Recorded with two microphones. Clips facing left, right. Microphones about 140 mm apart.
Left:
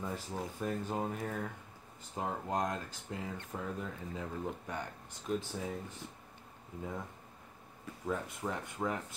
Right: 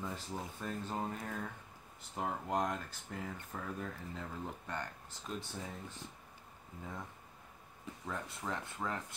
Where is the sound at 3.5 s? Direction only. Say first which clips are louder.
Left 2 dB; 20° left (ahead or behind).